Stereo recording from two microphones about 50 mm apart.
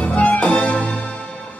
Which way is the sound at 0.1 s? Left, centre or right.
Left.